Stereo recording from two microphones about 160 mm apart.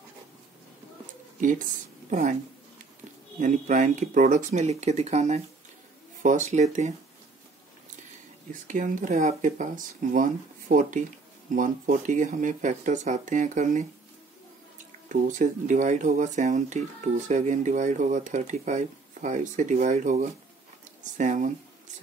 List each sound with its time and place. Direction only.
2.0 s speech: 50° right (ahead or behind)
3.3 s speech: 50° right (ahead or behind)
8.6 s speech: 55° right (ahead or behind)
15.0 s speech: 55° right (ahead or behind)